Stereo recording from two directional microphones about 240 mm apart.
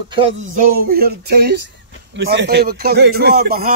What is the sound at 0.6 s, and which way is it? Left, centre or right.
A man's voice, right.